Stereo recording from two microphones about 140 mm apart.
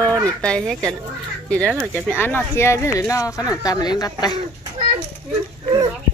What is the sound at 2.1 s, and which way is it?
A woman's voice, 15° left (ahead or behind).